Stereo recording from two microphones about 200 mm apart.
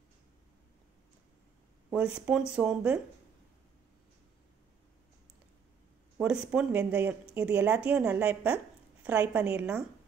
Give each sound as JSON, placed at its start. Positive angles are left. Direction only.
{"t": 1.9, "sound": "speech", "side_deg": -5}
{"t": 6.1, "sound": "speech", "side_deg": -5}